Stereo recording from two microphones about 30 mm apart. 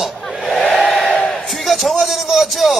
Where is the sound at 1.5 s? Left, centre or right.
Centre.